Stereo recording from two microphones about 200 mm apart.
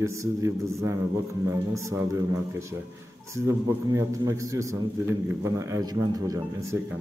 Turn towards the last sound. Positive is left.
turn(degrees=-20)  # may be behind; listen again after turning